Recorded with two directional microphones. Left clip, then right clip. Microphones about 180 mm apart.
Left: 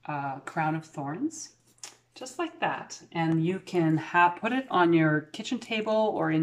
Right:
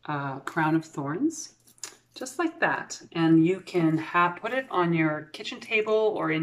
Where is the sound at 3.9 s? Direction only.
40° left (ahead or behind).